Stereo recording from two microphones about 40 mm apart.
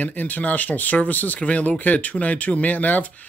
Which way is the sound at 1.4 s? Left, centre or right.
Left.